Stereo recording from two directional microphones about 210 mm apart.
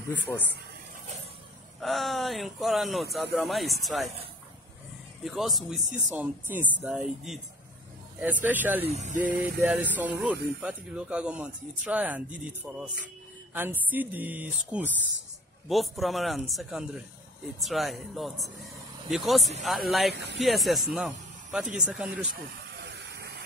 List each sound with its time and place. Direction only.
0.1 s speech: 10° left (ahead or behind)
1.8 s speech: centre (ahead or behind)
5.2 s speech: centre (ahead or behind)
8.8 s speech: 35° right (ahead or behind)
9.3 s speech: 5° right (ahead or behind)
22.9 s vehicle: 50° right (ahead or behind)